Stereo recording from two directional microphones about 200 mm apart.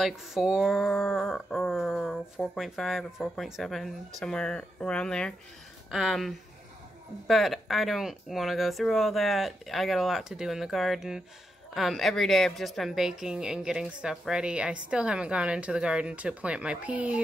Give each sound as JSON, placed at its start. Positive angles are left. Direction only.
{"t": 0.0, "sound": "a woman's voice", "side_deg": 0}